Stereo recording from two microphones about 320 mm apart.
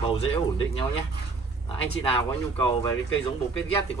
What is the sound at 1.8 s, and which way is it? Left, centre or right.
Speech, centre.